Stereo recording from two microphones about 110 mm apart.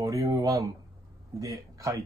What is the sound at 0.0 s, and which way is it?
Speech, 30° right (ahead or behind).